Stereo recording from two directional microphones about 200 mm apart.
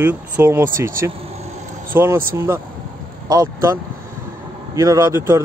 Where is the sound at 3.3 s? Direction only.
15° right (ahead or behind).